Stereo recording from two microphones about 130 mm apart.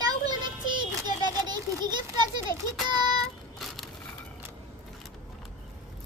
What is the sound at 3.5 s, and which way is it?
Crushing, centre (ahead or behind).